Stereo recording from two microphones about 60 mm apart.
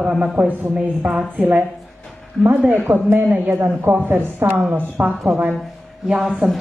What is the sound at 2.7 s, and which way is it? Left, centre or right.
Speech, right.